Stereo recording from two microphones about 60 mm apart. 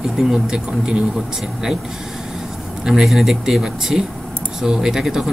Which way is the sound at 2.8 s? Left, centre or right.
Centre.